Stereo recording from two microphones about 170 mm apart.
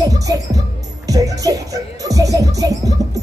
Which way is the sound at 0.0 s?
20° right (ahead or behind).